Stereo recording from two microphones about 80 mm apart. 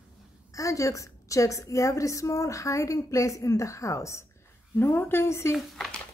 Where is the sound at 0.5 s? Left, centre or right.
Left.